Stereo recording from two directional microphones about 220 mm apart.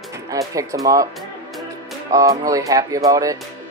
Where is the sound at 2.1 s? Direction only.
15° right (ahead or behind).